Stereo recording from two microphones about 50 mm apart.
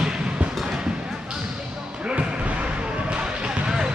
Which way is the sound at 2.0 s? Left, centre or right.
Right.